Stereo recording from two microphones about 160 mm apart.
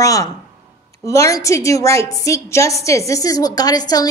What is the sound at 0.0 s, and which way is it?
A woman's voice, 20° left (ahead or behind).